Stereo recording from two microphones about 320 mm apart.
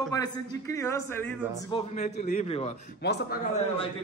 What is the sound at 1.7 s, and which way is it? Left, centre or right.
A man's voice, left.